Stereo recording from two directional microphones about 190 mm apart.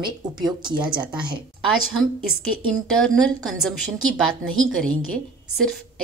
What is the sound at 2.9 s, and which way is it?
Speech, 5° left (ahead or behind).